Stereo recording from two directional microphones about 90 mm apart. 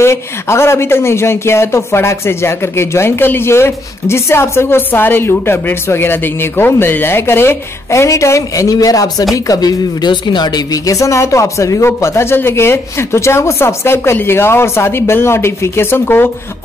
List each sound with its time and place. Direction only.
0.0 s speech: 30° left (ahead or behind)